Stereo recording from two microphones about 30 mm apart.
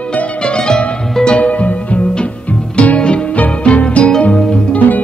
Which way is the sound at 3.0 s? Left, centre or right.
Left.